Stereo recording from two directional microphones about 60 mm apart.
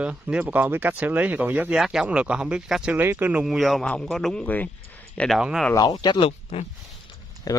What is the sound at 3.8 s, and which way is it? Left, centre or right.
Speech, left.